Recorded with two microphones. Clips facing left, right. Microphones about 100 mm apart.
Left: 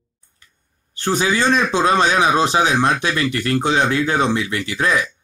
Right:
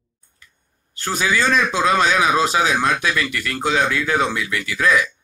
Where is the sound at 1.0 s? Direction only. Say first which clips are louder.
Left 2 dB; 25° left (ahead or behind).